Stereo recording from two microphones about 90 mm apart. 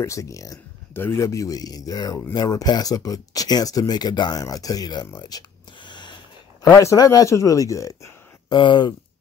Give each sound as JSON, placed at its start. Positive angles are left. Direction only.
{"t": 0.0, "sound": "speech", "side_deg": 35}
{"t": 0.9, "sound": "speech", "side_deg": 30}
{"t": 6.6, "sound": "speech", "side_deg": 35}
{"t": 8.5, "sound": "speech", "side_deg": 60}